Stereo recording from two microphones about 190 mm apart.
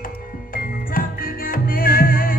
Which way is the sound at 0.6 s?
50° left (ahead or behind).